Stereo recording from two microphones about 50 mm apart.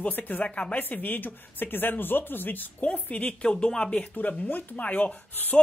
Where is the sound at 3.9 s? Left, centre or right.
Left.